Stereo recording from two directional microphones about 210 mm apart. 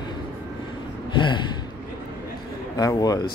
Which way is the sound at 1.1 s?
20° left (ahead or behind).